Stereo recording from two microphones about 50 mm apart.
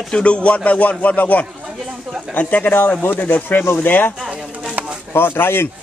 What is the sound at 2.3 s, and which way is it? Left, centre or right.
Speech, left.